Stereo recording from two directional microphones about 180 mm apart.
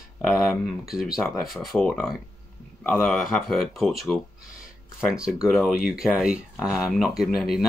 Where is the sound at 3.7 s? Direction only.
Centre (ahead or behind).